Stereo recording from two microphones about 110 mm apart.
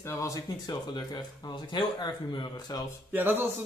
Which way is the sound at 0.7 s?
40° left (ahead or behind).